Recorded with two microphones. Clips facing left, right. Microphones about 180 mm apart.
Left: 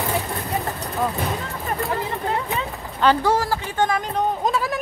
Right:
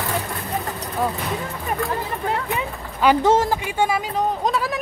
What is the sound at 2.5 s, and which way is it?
Speech, 15° right (ahead or behind).